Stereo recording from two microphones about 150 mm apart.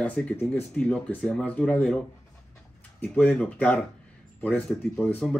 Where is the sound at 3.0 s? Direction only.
10° left (ahead or behind).